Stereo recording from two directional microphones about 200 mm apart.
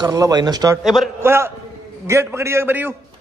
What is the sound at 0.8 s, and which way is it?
Speech, centre (ahead or behind).